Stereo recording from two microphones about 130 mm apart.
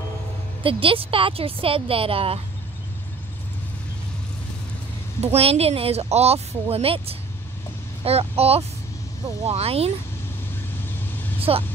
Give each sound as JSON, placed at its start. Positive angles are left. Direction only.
{"t": 0.7, "sound": "speech", "side_deg": -45}
{"t": 5.2, "sound": "speech", "side_deg": -50}
{"t": 11.5, "sound": "speech", "side_deg": -45}